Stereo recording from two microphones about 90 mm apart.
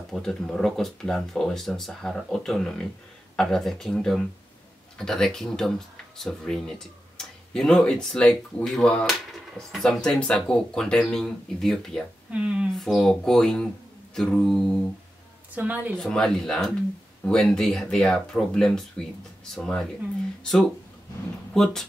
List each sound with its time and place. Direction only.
0.1 s speech: 5° left (ahead or behind)
12.3 s speech: 15° right (ahead or behind)
12.7 s speech: centre (ahead or behind)
15.5 s a woman's voice: 20° right (ahead or behind)
16.0 s speech: 10° left (ahead or behind)